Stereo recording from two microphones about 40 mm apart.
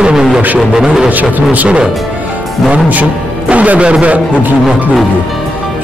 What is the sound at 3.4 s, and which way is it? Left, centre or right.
Speech, right.